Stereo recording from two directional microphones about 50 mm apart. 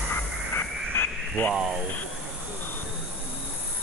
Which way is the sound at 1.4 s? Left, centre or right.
Left.